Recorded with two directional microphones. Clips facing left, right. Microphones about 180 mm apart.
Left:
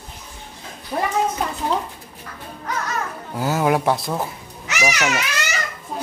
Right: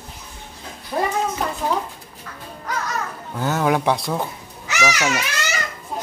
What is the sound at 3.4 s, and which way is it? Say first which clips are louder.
Speech: left 1 dB; 5° left (ahead or behind).